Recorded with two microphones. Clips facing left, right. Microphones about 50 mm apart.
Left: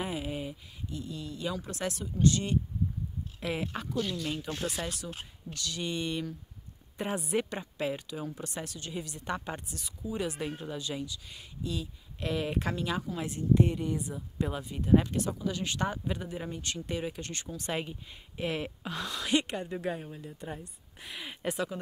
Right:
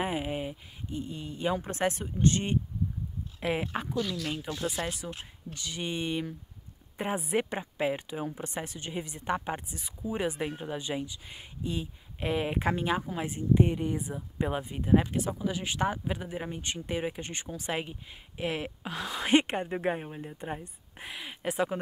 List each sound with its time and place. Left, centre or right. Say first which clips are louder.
0.0 s speech: right 3 dB; right
3.3 s speech: right 3 dB; centre
14.8 s speech: left 1 dB; centre
19.1 s speech: right 5 dB; right
21.1 s speech: even; centre